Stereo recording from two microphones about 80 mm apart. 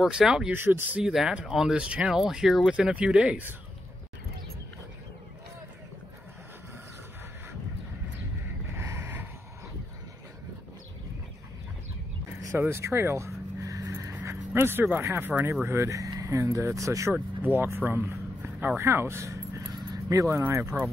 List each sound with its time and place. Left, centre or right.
0.0 s speech: centre
0.5 s speech: right
1.0 s speech: centre
2.7 s speech: centre
8.7 s a sound: right
12.4 s vehicle: right
15.6 s speech: right
17.1 s speech: right